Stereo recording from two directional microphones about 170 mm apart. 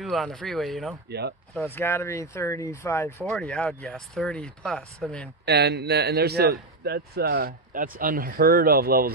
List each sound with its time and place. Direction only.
0.0 s speech: centre (ahead or behind)
1.8 s speech: 15° left (ahead or behind)
3.3 s speech: centre (ahead or behind)
5.4 s speech: 75° right (ahead or behind)